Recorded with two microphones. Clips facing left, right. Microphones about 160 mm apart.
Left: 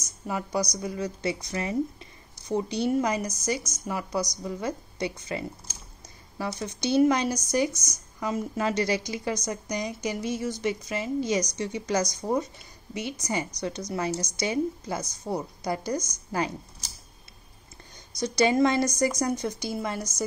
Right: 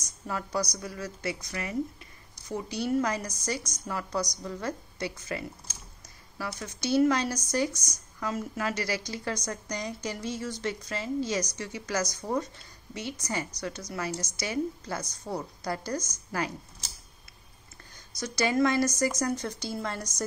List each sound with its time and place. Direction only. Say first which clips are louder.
0.3 s a woman's voice: left 3 dB; 15° left (ahead or behind)
7.7 s a woman's voice: left 1 dB; 10° right (ahead or behind)
8.2 s a woman's voice: left 4 dB; 20° left (ahead or behind)
18.2 s a woman's voice: left 4 dB; 20° left (ahead or behind)